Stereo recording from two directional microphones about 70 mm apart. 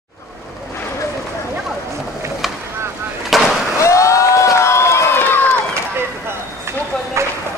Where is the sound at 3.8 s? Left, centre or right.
Left.